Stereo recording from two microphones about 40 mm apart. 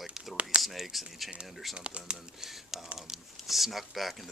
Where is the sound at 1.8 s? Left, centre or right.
Right.